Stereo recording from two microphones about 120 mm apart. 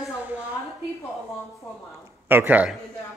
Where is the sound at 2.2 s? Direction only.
15° right (ahead or behind).